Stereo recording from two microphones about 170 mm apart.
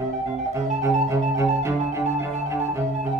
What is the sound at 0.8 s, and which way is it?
Music, 15° right (ahead or behind).